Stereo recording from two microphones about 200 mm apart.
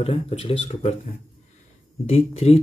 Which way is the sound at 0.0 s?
30° left (ahead or behind).